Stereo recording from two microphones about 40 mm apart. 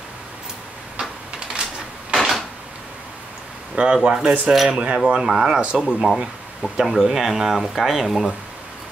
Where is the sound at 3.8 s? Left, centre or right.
Right.